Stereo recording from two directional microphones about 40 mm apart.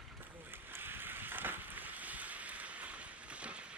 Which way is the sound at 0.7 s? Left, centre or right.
Right.